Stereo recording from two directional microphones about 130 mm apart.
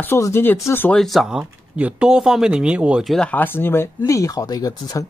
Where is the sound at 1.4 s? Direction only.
10° right (ahead or behind).